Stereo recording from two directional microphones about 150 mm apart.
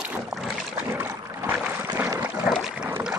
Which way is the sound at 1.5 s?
10° right (ahead or behind).